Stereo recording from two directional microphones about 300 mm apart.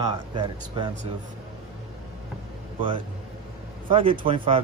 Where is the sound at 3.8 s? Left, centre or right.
Centre.